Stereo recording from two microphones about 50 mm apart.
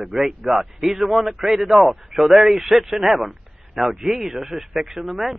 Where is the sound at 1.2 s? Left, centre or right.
Centre.